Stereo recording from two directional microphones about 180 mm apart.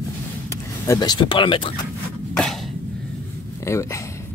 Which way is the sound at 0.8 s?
25° left (ahead or behind).